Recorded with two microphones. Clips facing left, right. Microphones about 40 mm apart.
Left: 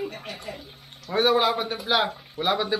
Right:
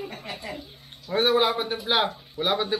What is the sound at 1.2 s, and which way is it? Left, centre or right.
Speech, centre.